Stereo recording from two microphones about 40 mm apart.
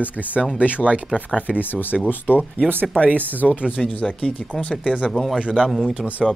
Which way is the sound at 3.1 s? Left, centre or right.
Right.